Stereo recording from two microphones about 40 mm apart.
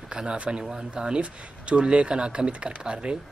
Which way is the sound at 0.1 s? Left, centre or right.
Right.